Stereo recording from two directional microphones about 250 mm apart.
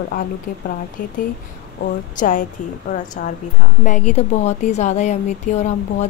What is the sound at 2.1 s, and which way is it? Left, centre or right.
Speech, left.